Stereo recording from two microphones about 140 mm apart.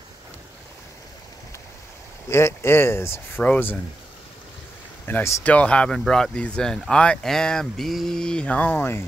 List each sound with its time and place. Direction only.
2.2 s speech: 20° left (ahead or behind)
5.0 s speech: 15° left (ahead or behind)